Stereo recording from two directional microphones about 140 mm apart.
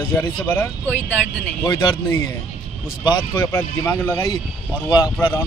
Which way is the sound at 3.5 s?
15° left (ahead or behind).